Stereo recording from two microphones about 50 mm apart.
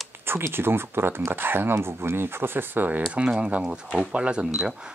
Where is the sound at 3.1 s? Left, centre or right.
Right.